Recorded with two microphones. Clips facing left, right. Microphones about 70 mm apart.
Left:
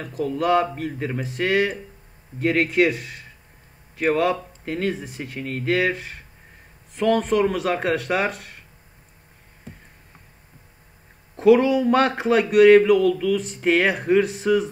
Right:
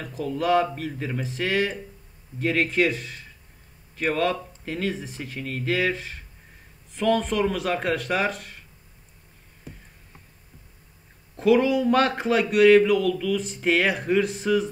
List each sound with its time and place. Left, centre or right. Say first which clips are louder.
0.0 s a man's voice: left 3 dB; centre
11.3 s speech: left 4 dB; centre